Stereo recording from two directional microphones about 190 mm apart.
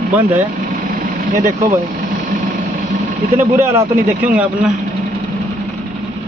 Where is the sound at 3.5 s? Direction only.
10° right (ahead or behind).